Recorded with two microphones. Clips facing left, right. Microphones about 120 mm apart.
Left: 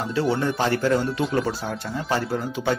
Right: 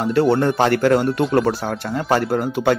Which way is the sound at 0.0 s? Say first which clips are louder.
Right 7 dB; 55° right (ahead or behind).